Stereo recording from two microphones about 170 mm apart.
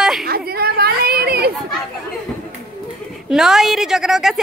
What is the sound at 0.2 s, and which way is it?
Chatter, 65° right (ahead or behind).